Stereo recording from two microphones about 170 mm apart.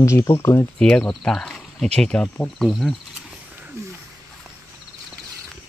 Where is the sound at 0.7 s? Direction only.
5° left (ahead or behind).